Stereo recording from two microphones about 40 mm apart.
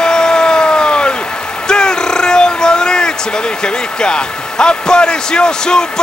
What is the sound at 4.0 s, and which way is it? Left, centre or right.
A man's voice, left.